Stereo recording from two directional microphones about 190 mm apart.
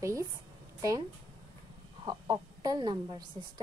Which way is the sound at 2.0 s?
20° right (ahead or behind).